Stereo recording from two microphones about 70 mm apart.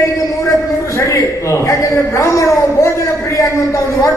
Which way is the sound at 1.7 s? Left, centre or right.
Left.